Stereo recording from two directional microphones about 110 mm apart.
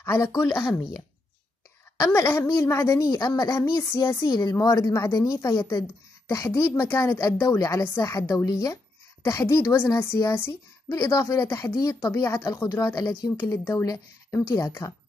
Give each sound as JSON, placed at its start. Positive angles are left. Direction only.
{"t": 0.0, "sound": "speech", "side_deg": 25}
{"t": 2.0, "sound": "a woman's voice", "side_deg": 20}
{"t": 13.4, "sound": "a woman's voice", "side_deg": 20}
{"t": 13.8, "sound": "a woman's voice", "side_deg": 30}